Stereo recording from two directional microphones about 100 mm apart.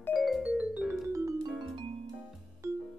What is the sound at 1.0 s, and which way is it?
Music, 30° right (ahead or behind).